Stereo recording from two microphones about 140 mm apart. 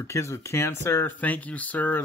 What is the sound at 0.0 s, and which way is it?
Speech, 20° left (ahead or behind).